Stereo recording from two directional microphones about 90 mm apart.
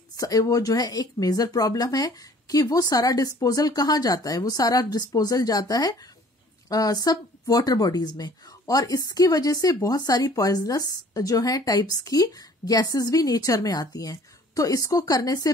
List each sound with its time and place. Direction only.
0.2 s a woman's voice: 45° left (ahead or behind)